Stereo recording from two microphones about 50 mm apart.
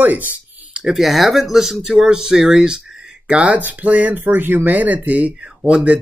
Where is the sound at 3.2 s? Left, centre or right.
Right.